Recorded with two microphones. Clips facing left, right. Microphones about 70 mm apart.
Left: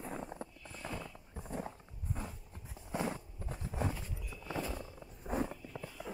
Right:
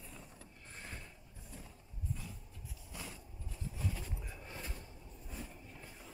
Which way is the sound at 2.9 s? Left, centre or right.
Left.